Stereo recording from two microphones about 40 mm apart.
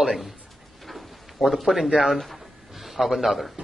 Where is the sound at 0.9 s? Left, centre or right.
Centre.